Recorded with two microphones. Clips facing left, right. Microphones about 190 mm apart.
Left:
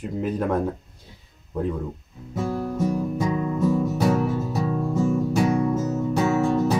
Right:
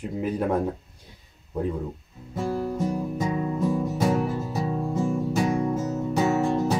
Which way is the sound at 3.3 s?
15° right (ahead or behind).